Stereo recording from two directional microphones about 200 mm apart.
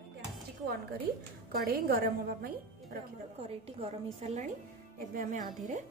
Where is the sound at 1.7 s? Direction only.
50° right (ahead or behind).